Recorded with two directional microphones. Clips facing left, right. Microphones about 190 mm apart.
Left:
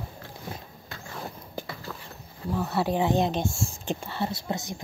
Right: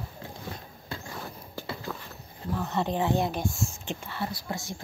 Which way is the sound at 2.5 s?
10° left (ahead or behind).